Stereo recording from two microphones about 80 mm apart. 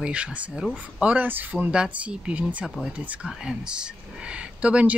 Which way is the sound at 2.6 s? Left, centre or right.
Centre.